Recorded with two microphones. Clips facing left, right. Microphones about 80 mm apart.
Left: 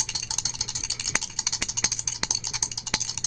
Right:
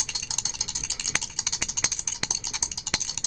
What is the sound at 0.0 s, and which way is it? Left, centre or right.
Typing, centre.